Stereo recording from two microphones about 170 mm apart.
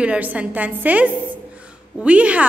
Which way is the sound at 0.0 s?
10° right (ahead or behind).